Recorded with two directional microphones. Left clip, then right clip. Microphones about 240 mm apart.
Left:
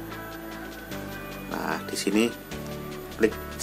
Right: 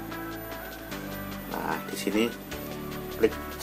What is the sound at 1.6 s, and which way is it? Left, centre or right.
Music, centre.